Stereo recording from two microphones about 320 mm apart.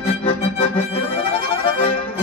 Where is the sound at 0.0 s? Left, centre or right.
Centre.